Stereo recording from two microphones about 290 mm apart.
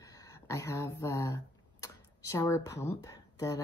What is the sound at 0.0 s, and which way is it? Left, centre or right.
Speech, centre.